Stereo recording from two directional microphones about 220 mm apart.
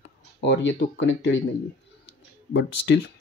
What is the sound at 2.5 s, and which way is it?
Speech, 50° left (ahead or behind).